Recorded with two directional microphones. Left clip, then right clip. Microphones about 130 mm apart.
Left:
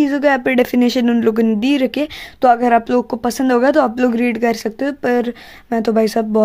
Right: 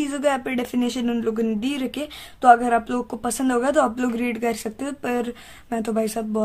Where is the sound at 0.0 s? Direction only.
45° left (ahead or behind).